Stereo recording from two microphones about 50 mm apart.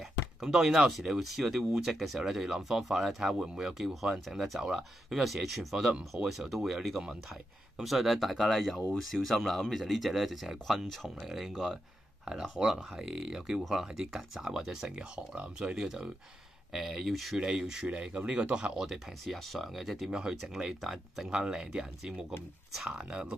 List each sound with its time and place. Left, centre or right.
0.4 s speech: centre
3.3 s speech: centre
16.7 s speech: centre
17.4 s speech: centre
17.8 s speech: right
18.9 s speech: centre
20.1 s speech: centre